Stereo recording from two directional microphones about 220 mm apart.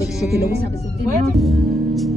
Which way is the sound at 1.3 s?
Centre (ahead or behind).